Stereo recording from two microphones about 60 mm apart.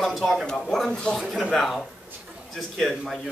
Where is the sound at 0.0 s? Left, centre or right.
Centre.